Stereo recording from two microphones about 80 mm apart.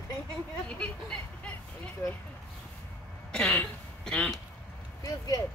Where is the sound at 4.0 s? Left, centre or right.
Centre.